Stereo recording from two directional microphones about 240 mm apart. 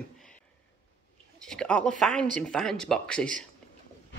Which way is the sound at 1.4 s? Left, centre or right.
Centre.